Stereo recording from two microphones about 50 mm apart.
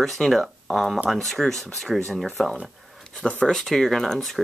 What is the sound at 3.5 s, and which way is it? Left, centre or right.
Speech, centre.